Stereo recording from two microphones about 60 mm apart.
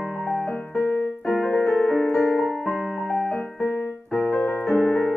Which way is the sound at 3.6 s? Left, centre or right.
Left.